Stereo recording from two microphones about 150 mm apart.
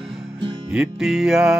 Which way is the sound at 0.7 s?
5° right (ahead or behind).